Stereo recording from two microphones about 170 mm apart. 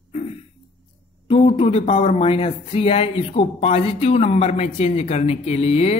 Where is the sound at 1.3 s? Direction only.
35° left (ahead or behind).